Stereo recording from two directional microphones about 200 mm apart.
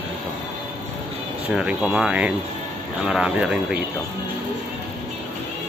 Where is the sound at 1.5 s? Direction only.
5° right (ahead or behind).